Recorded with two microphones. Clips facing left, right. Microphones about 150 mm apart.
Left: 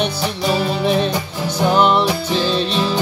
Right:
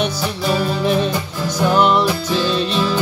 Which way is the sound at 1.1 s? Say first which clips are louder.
Even; 15° left (ahead or behind).